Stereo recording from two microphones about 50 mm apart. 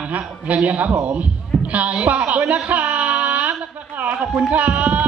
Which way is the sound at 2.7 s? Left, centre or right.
Right.